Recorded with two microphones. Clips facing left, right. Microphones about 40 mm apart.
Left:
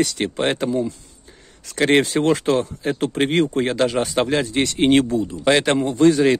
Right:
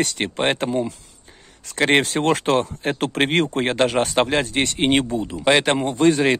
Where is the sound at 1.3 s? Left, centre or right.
Centre.